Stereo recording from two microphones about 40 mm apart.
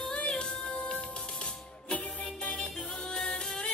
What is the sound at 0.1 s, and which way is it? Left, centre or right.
Music, left.